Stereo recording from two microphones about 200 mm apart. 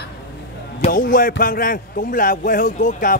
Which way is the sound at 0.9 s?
45° left (ahead or behind).